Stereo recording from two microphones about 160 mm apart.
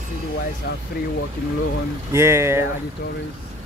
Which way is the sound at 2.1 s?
15° right (ahead or behind).